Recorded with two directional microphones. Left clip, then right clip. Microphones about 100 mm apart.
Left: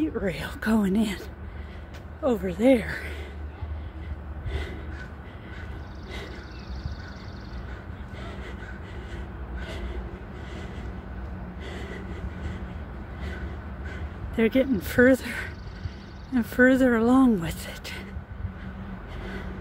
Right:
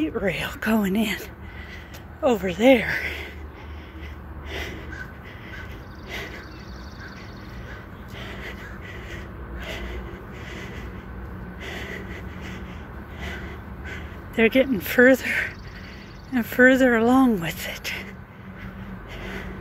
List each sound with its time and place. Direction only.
0.0 s speech: 20° left (ahead or behind)
2.2 s speech: 10° left (ahead or behind)
4.5 s a sound: 25° left (ahead or behind)
8.2 s vehicle: 25° left (ahead or behind)
9.7 s gasp: 30° left (ahead or behind)
11.6 s a sound: 25° left (ahead or behind)
13.8 s speech: 20° left (ahead or behind)